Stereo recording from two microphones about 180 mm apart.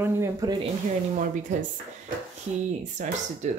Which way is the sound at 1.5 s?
45° right (ahead or behind).